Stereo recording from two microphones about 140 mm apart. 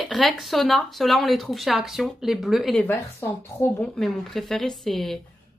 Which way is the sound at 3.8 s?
5° left (ahead or behind).